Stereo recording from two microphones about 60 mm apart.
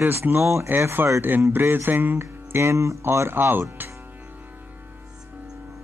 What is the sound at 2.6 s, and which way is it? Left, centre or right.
Speech, right.